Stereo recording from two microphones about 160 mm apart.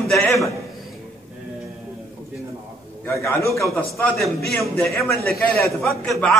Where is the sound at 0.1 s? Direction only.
Centre (ahead or behind).